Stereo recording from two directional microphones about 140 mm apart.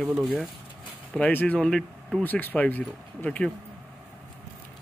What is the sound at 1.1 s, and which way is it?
Speech, 10° left (ahead or behind).